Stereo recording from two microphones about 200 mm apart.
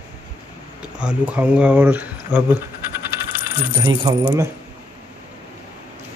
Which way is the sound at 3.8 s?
20° right (ahead or behind).